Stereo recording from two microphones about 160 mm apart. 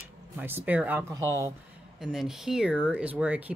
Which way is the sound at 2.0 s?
5° right (ahead or behind).